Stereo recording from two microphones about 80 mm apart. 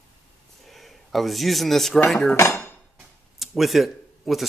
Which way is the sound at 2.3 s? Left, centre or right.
Left.